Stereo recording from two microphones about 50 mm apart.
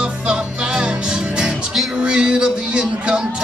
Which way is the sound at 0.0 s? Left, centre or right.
Centre.